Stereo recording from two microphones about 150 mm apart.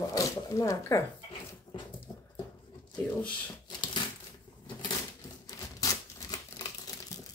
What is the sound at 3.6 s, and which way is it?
Crumpling, 30° left (ahead or behind).